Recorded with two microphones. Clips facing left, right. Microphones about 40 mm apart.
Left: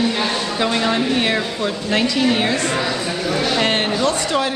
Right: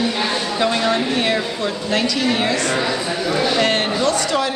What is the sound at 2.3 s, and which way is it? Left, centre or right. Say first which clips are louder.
Speech: left 1 dB; centre.